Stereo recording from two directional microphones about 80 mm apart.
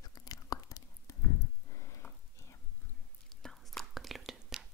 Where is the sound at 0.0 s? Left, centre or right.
Left.